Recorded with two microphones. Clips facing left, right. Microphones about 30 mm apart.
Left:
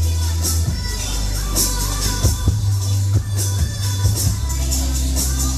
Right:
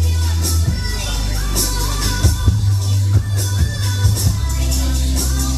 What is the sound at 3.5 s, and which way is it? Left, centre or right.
Music, right.